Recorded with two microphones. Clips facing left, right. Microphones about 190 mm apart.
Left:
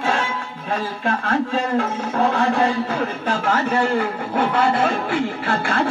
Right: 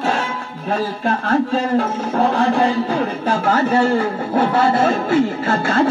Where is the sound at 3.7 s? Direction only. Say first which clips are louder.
Right 4 dB; 40° right (ahead or behind).